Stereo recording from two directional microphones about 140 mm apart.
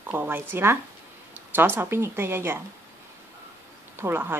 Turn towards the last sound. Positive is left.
turn(degrees=-15)  # may be behind; listen again after turning